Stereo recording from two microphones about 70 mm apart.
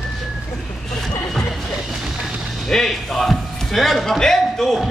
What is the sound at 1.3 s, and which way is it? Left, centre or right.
Music, centre.